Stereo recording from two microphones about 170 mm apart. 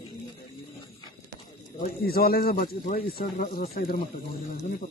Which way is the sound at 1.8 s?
60° left (ahead or behind).